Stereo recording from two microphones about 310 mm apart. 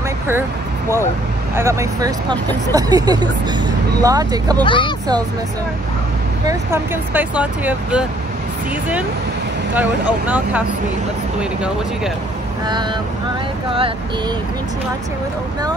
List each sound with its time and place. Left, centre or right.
0.3 s vehicle: centre
1.5 s speech: centre
4.6 s speech: centre
6.4 s speech: centre
9.8 s speech: centre